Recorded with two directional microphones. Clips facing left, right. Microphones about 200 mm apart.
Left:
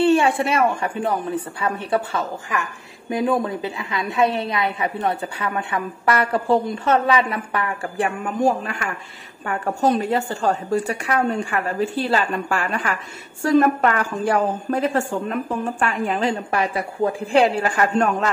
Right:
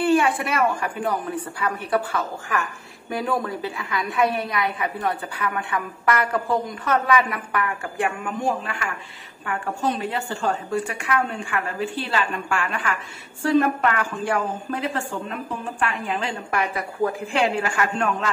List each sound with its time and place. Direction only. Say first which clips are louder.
0.0 s a woman's voice: left 3 dB; 25° left (ahead or behind)